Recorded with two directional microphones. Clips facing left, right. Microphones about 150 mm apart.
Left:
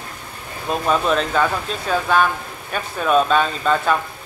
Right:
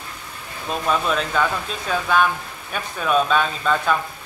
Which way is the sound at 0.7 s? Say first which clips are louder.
Left 4 dB; 45° left (ahead or behind).